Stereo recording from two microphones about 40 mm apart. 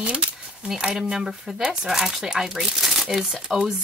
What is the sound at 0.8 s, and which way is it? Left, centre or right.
Speech, centre.